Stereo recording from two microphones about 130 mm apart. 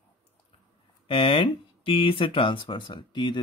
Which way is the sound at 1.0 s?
40° left (ahead or behind).